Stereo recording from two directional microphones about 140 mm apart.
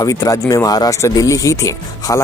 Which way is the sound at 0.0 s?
25° left (ahead or behind).